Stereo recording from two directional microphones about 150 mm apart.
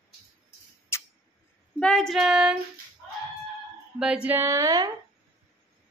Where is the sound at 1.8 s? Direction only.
5° left (ahead or behind).